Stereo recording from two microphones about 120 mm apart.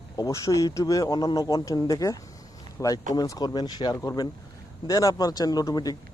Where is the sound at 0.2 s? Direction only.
25° left (ahead or behind).